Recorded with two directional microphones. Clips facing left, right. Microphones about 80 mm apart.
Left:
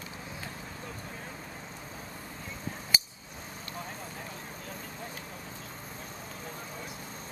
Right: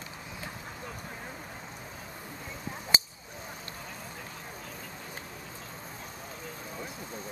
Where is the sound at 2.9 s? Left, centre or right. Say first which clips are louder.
Right 2 dB; right.